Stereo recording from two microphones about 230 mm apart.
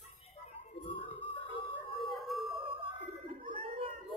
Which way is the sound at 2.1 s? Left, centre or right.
Centre.